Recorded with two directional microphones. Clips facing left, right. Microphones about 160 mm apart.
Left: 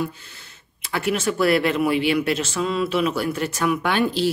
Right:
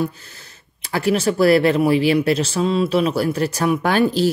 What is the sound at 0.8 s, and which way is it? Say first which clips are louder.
Speech: right 4 dB; 35° right (ahead or behind).